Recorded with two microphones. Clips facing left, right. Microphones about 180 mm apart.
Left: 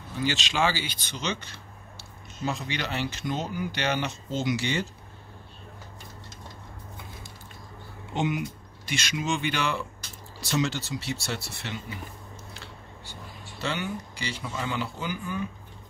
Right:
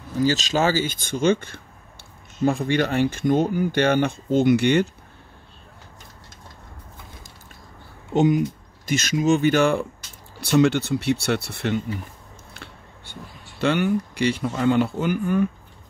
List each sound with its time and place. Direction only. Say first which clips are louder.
0.1 s speech: right 8 dB; 40° right (ahead or behind); by 4.8 s 60° right (ahead or behind)
8.1 s speech: right 10 dB; 40° right (ahead or behind)
10.4 s speech: right 10 dB; 60° right (ahead or behind)
13.1 s speech: right 4 dB; 65° right (ahead or behind)